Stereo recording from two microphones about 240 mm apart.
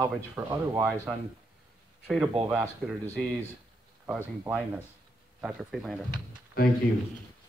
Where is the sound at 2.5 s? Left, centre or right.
Centre.